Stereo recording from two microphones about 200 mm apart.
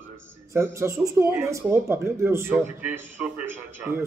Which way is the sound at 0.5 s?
15° right (ahead or behind).